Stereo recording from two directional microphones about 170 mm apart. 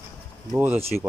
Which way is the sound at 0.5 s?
10° right (ahead or behind).